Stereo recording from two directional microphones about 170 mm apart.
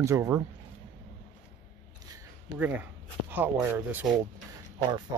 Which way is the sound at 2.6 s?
10° right (ahead or behind).